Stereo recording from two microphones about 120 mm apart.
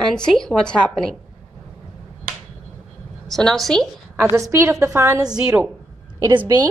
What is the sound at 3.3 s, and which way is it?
Speech, 5° left (ahead or behind).